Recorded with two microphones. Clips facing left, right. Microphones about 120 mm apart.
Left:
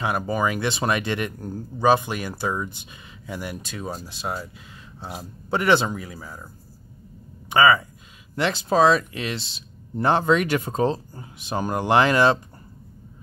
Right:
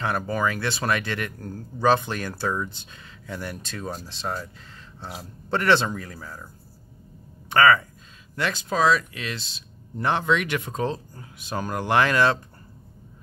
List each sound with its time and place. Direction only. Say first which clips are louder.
0.0 s speech: left 2 dB; 15° left (ahead or behind)
7.4 s speech: left 1 dB; 15° left (ahead or behind)
8.4 s speech: left 5 dB; 30° left (ahead or behind)